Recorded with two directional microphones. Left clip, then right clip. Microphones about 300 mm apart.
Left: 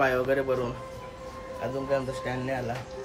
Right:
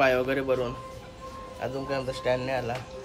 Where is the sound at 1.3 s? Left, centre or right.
Centre.